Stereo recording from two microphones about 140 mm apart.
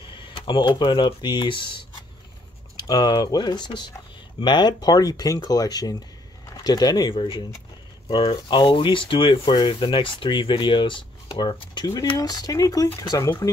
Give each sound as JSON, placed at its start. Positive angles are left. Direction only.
{"t": 0.1, "sound": "speech", "side_deg": 35}